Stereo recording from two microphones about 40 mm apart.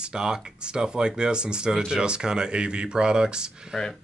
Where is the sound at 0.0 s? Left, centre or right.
Centre.